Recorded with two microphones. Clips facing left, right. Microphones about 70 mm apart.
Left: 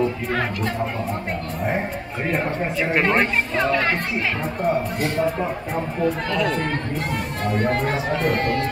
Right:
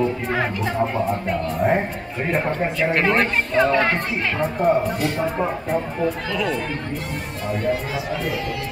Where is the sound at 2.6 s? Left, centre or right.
Centre.